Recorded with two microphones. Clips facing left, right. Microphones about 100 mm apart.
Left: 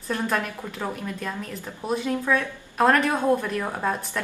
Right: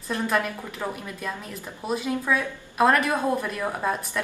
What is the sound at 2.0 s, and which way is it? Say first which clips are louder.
A woman's voice: left 1 dB; 10° right (ahead or behind).